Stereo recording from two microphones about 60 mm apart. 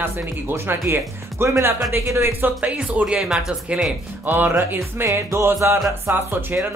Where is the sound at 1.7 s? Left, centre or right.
Right.